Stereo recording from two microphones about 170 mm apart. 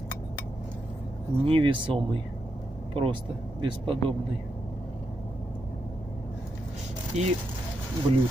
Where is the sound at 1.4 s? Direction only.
30° right (ahead or behind).